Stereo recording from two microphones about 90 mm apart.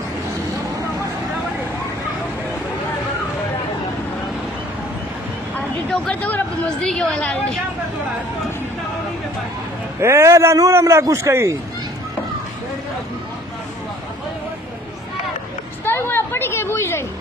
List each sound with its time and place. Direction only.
5.9 s a woman's voice: 10° left (ahead or behind)
9.9 s a man's voice: 30° right (ahead or behind)
15.8 s a sound: 25° left (ahead or behind)